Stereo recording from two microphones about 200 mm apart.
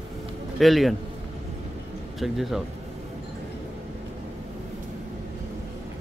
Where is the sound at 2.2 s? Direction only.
Centre (ahead or behind).